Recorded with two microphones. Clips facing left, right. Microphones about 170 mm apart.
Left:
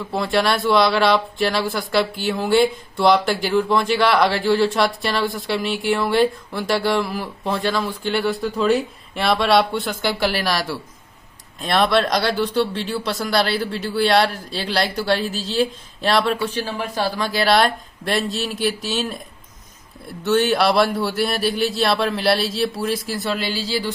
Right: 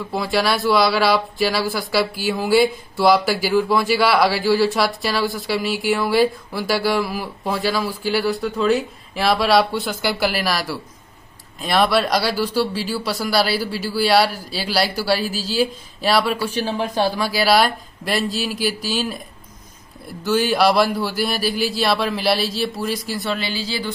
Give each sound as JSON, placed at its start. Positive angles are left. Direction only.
{"t": 0.1, "sound": "speech", "side_deg": 0}
{"t": 16.6, "sound": "speech", "side_deg": -20}
{"t": 17.1, "sound": "speech", "side_deg": -5}
{"t": 20.2, "sound": "speech", "side_deg": 0}